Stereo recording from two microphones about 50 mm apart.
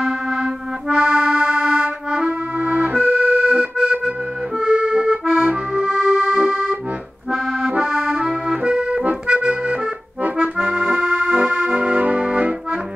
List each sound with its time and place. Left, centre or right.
0.0 s music: centre
4.6 s accordion: right
5.2 s accordion: right
7.6 s accordion: right
10.2 s accordion: right